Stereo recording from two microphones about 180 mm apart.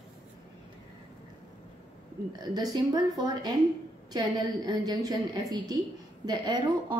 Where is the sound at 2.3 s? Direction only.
20° right (ahead or behind).